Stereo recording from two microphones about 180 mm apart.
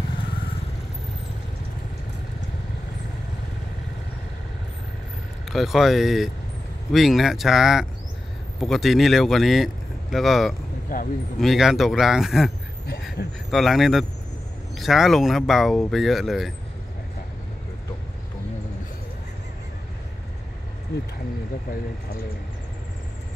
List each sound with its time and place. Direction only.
5.5 s speech: centre (ahead or behind)
10.9 s speech: 50° left (ahead or behind)
11.3 s speech: centre (ahead or behind)